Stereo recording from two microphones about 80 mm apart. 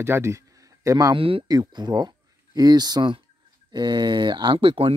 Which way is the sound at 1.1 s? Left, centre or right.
Right.